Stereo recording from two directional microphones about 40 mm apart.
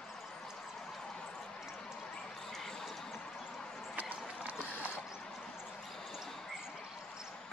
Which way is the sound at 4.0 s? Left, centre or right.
Right.